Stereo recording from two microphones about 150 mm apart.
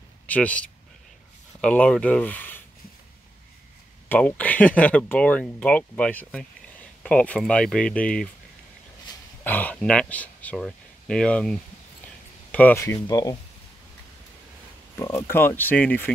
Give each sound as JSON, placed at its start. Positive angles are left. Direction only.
{"t": 0.3, "sound": "speech", "side_deg": 10}
{"t": 4.1, "sound": "speech", "side_deg": 10}
{"t": 9.4, "sound": "speech", "side_deg": 10}
{"t": 12.8, "sound": "speech", "side_deg": 20}
{"t": 15.0, "sound": "speech", "side_deg": 20}